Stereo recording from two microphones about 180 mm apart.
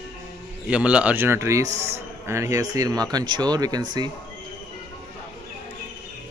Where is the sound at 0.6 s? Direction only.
5° right (ahead or behind); by 4.1 s 25° right (ahead or behind).